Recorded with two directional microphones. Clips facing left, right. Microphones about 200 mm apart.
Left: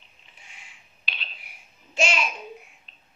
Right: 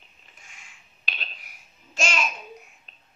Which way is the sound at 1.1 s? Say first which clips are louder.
Right 2 dB; 45° right (ahead or behind).